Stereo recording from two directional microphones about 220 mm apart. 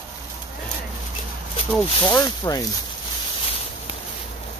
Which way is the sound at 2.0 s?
15° left (ahead or behind).